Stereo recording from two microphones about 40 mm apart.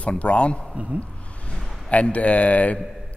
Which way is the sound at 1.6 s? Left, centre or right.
Centre.